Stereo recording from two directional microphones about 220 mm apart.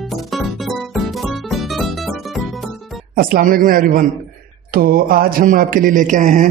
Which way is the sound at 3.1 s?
40° right (ahead or behind).